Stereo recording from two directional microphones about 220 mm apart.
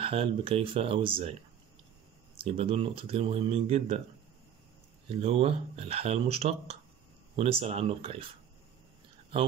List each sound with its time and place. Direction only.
0.0 s speech: 25° right (ahead or behind)
2.3 s speech: 25° right (ahead or behind)
5.2 s speech: 30° right (ahead or behind)